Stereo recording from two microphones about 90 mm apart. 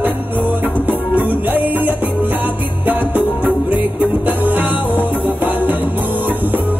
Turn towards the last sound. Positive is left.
turn(degrees=-20)  # may be behind; listen again after turning